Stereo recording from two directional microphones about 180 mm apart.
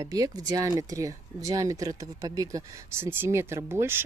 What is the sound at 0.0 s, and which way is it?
Speech, 20° right (ahead or behind).